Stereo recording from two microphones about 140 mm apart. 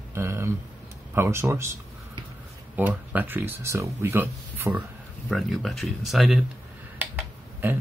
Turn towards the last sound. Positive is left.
turn(degrees=-15)  # may be behind; listen again after turning